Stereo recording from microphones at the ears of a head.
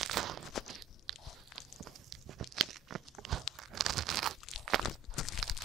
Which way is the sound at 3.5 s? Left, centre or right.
Right.